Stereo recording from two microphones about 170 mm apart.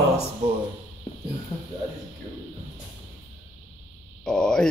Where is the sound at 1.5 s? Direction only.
20° left (ahead or behind).